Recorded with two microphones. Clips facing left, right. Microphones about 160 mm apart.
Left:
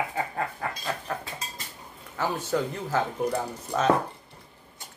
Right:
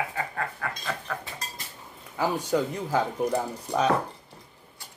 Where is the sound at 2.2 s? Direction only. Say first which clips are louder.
Right 2 dB; 10° right (ahead or behind).